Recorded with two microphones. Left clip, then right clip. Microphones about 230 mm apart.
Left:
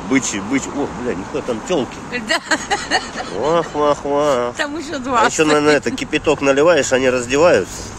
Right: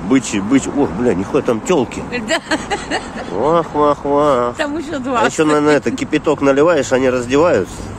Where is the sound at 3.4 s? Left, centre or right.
Centre.